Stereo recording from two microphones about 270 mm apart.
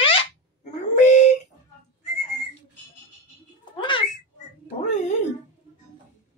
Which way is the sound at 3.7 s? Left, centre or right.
Centre.